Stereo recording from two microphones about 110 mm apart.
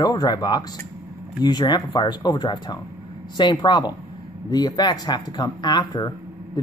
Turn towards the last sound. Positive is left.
turn(degrees=40)  # may be behind; listen again after turning